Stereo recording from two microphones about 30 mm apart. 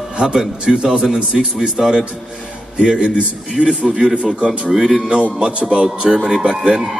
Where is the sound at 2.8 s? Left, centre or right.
Right.